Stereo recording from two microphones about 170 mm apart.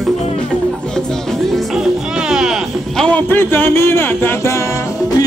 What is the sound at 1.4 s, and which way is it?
Music, centre (ahead or behind).